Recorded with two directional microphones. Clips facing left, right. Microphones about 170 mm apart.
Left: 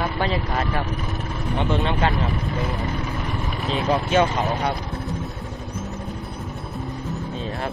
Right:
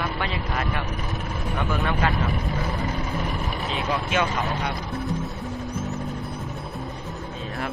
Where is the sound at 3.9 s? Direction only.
35° left (ahead or behind).